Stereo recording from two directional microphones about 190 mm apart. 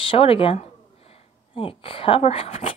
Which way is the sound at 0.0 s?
30° left (ahead or behind).